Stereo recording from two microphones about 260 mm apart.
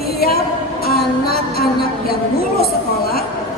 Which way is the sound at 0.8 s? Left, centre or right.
Left.